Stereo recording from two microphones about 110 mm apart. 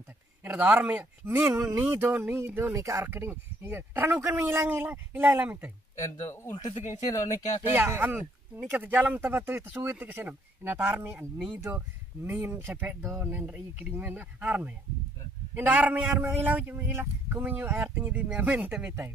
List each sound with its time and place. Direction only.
0.4 s a man's voice: 15° right (ahead or behind)
1.5 s a man's voice: 25° right (ahead or behind)
3.1 s a man's voice: 20° right (ahead or behind)
6.0 s speech: 30° left (ahead or behind)
6.7 s speech: 90° left
7.7 s a man's voice: 20° right (ahead or behind)
11.3 s a man's voice: 10° right (ahead or behind)
12.3 s a man's voice: 20° right (ahead or behind)